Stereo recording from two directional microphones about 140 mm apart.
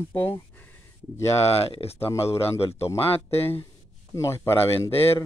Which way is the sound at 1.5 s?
45° left (ahead or behind).